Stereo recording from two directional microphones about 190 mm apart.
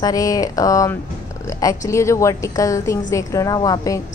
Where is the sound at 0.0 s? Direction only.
20° left (ahead or behind).